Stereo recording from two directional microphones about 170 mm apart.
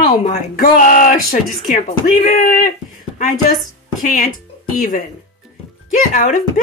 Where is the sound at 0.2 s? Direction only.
50° left (ahead or behind).